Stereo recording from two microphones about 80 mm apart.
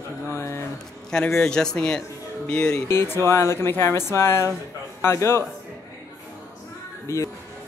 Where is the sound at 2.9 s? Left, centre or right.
Left.